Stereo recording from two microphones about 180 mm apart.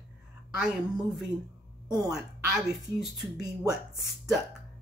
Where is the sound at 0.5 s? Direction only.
5° right (ahead or behind).